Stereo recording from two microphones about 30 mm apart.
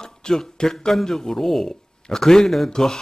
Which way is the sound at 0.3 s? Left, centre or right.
Centre.